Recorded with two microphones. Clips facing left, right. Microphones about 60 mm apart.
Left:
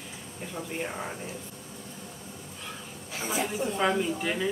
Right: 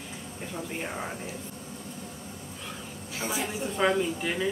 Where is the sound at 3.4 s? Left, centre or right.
Centre.